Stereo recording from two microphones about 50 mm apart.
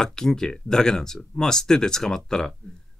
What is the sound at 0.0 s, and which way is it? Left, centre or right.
Speech, centre.